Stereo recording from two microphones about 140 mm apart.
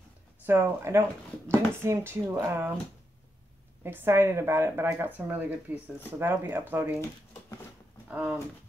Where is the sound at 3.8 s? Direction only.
15° right (ahead or behind).